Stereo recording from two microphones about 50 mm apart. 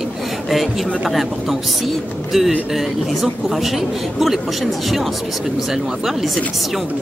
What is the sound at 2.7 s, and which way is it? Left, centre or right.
Speech, centre.